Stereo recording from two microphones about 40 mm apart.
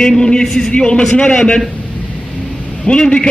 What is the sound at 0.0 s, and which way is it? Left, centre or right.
A man's voice, centre.